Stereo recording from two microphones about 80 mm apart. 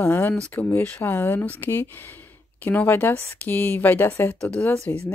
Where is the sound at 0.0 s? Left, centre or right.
Left.